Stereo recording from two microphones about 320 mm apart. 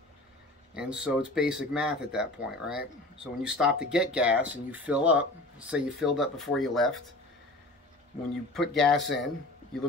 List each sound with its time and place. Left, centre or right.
0.7 s speech: centre
8.5 s speech: centre